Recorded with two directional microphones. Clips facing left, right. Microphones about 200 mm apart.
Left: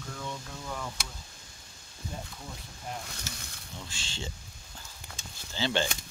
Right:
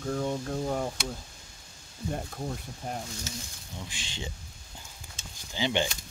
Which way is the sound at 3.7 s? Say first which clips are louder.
Right 2 dB; 15° right (ahead or behind).